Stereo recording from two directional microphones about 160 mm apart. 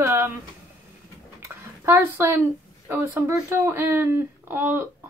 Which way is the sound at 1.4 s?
15° right (ahead or behind).